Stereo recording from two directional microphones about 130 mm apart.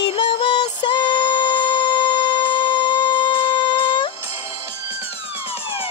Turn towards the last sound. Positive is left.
turn(degrees=35)  # may be behind; listen again after turning